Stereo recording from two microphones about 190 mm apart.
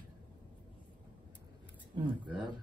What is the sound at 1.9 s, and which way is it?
Speech, 25° right (ahead or behind).